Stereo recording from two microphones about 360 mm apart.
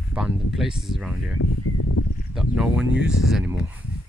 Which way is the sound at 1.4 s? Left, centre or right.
Left.